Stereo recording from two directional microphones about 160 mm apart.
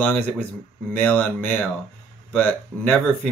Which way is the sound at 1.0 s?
10° left (ahead or behind).